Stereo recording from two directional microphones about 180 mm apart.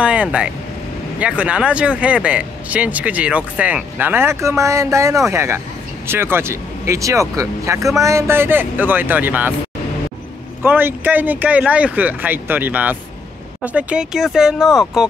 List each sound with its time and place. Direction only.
0.0 s speech: 5° right (ahead or behind)
10.6 s speech: 10° right (ahead or behind)